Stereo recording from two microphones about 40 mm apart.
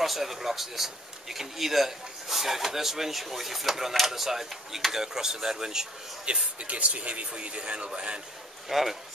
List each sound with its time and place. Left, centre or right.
0.0 s speech: centre
6.2 s speech: right
8.6 s speech: centre